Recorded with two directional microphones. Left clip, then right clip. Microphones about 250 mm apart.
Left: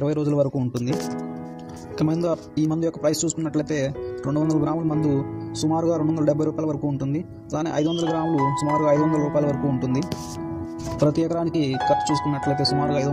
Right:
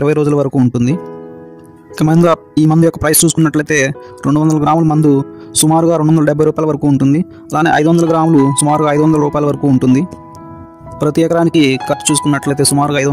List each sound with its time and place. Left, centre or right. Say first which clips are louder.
0.0 s speech: right 10 dB; right
2.0 s speech: right 12 dB; right